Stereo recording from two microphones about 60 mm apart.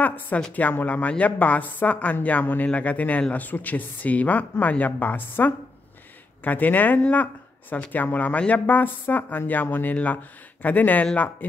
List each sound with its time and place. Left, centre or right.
0.0 s speech: left